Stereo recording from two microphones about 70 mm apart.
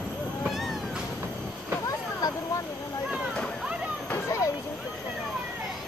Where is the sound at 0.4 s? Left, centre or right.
Centre.